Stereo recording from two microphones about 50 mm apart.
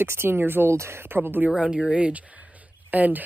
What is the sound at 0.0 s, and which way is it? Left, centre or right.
Speech, right.